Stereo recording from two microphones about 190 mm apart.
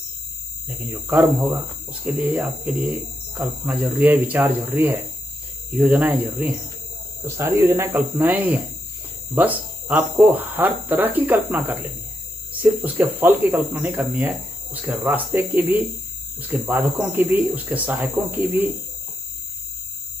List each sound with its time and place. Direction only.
0.7 s speech: 10° right (ahead or behind)